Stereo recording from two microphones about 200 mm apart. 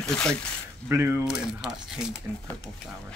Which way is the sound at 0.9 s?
10° right (ahead or behind).